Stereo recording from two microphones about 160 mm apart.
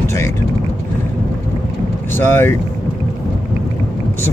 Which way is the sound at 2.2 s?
15° left (ahead or behind).